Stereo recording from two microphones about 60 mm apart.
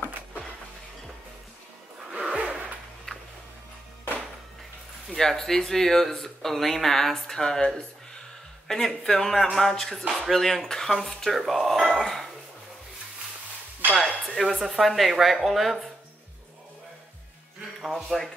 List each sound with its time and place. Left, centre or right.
2.1 s zipper: right
3.1 s music: centre
5.1 s speech: centre
13.9 s music: right
14.3 s speech: centre
17.7 s speech: centre